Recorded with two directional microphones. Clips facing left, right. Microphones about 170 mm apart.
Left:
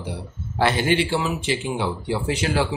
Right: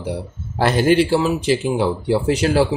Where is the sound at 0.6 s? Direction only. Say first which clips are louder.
Right 5 dB; 40° right (ahead or behind).